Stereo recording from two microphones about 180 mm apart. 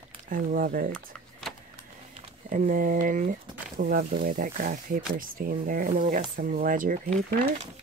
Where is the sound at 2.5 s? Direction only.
50° right (ahead or behind).